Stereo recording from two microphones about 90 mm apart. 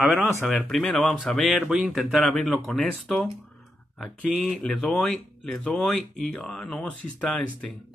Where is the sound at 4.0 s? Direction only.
Centre (ahead or behind).